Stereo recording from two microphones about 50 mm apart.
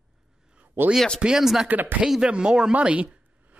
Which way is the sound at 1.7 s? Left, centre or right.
Right.